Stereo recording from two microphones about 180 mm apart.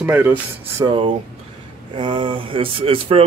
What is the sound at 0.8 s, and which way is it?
Speech, 25° right (ahead or behind).